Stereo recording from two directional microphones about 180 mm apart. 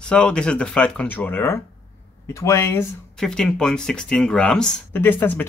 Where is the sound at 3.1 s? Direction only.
5° left (ahead or behind).